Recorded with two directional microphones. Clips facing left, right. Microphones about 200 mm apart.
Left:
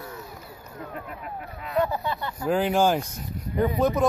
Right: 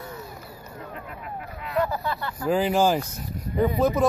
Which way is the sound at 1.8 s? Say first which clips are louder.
Even; 20° left (ahead or behind).